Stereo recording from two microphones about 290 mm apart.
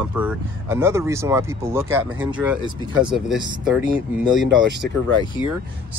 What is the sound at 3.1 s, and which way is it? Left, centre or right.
Speech, centre.